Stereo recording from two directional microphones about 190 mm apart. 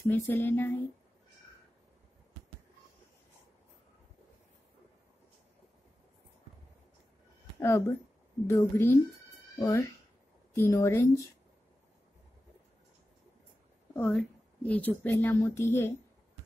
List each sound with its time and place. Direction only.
0.0 s a woman's voice: 10° left (ahead or behind)
7.6 s a woman's voice: 15° left (ahead or behind)
13.9 s a woman's voice: 10° left (ahead or behind)